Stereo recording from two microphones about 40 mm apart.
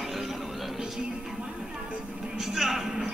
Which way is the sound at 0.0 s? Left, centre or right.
Centre.